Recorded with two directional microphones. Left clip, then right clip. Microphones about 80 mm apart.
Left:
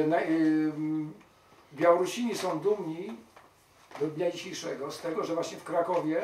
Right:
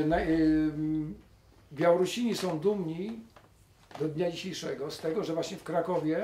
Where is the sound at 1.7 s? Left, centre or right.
Centre.